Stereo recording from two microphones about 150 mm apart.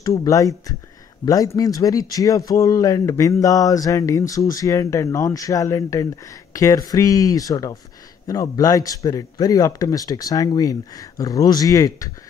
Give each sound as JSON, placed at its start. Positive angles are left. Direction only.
{"t": 0.0, "sound": "speech", "side_deg": 25}